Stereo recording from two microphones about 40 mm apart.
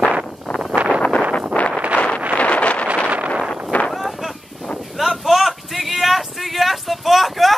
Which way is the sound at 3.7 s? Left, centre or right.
Left.